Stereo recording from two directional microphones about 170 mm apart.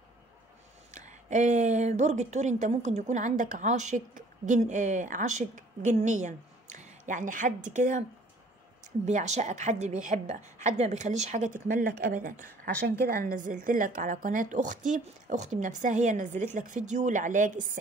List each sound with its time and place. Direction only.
0.9 s a woman's voice: 45° right (ahead or behind)
9.0 s a woman's voice: 45° right (ahead or behind)